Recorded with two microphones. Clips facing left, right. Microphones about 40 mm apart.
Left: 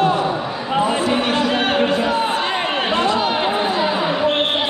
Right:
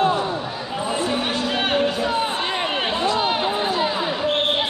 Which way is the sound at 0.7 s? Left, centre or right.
Left.